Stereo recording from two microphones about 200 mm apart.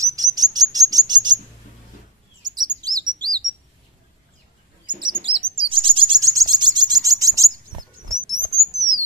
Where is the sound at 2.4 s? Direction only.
20° right (ahead or behind).